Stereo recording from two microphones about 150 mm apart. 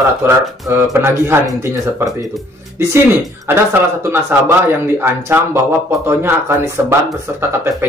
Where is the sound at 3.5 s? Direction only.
15° right (ahead or behind).